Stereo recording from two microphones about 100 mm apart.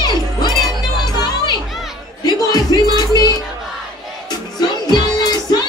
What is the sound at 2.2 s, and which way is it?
Music, 40° left (ahead or behind).